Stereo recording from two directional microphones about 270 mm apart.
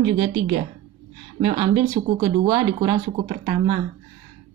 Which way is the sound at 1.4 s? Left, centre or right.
Centre.